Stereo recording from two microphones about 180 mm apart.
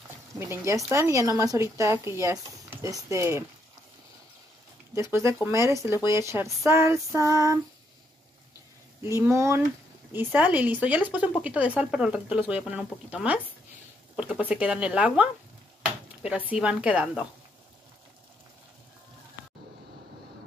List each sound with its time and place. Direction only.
0.4 s speech: 15° right (ahead or behind)
4.9 s speech: 15° right (ahead or behind)
9.0 s a woman's voice: 15° right (ahead or behind)